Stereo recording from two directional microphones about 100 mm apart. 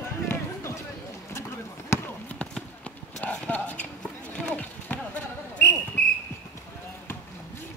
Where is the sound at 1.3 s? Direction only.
25° left (ahead or behind).